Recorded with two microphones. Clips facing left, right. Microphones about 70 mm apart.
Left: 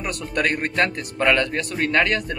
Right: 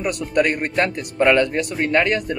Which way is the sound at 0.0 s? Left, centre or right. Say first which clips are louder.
Right 5 dB; centre.